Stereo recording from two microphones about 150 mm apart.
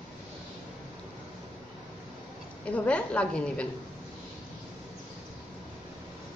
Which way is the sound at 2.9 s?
10° left (ahead or behind).